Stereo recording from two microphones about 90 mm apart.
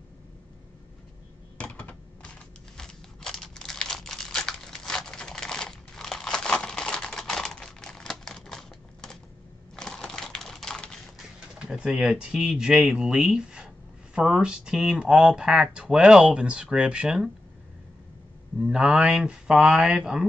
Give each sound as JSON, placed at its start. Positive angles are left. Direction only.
{"t": 1.6, "sound": "typing", "side_deg": 15}
{"t": 2.8, "sound": "crumpling", "side_deg": 5}
{"t": 9.8, "sound": "typewriter", "side_deg": 5}
{"t": 11.1, "sound": "speech", "side_deg": -5}
{"t": 18.6, "sound": "speech", "side_deg": -10}